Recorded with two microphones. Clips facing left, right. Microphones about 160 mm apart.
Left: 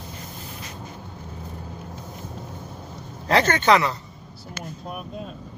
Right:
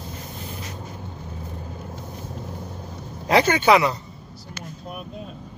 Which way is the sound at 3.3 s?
10° right (ahead or behind).